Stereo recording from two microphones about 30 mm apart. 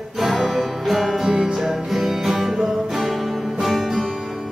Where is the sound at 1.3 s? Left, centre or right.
Right.